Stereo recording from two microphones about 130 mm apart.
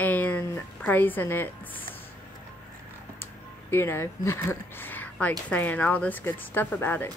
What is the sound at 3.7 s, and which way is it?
Speech, 20° left (ahead or behind).